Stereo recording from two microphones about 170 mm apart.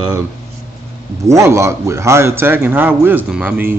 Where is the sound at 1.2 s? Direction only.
15° right (ahead or behind).